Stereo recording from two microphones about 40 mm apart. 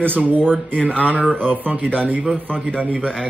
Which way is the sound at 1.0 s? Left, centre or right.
Right.